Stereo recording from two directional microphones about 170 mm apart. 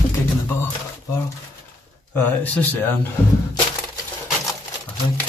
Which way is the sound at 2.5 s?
10° left (ahead or behind).